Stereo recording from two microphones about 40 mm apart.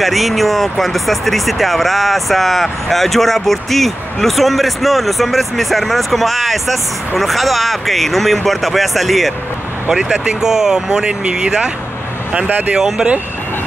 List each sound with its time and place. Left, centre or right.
0.0 s speech: centre
9.8 s speech: centre
12.3 s speech: right
12.7 s speech: centre